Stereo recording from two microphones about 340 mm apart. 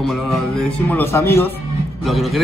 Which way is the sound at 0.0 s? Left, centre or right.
Centre.